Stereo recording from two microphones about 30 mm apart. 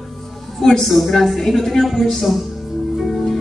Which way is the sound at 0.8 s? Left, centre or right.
Centre.